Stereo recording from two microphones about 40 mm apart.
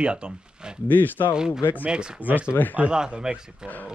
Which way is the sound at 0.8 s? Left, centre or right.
Left.